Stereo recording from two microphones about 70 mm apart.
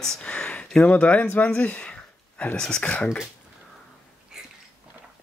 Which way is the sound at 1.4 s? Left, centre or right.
Centre.